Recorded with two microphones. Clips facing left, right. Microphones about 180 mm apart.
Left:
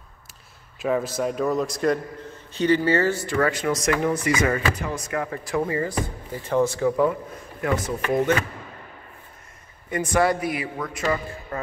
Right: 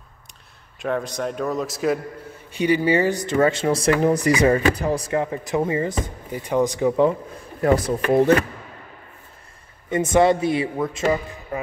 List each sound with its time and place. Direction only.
0.7 s a man's voice: 5° left (ahead or behind); by 7.2 s 20° right (ahead or behind)
7.6 s speech: 35° right (ahead or behind)
9.8 s speech: 25° right (ahead or behind)
11.5 s speech: 15° right (ahead or behind)